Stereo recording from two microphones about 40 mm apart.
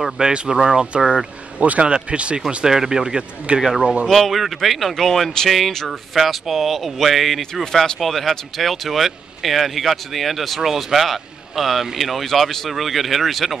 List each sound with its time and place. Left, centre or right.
0.2 s speech: right
2.7 s speech: centre
3.5 s speech: right
4.1 s speech: centre
7.6 s speech: centre